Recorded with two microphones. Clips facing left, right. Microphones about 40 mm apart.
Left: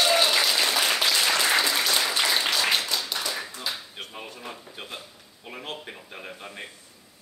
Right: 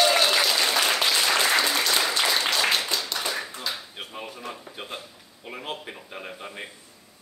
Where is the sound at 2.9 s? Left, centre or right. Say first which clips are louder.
Right 1 dB; centre.